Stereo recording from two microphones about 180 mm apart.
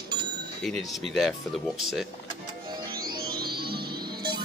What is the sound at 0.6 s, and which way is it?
Speech, centre (ahead or behind).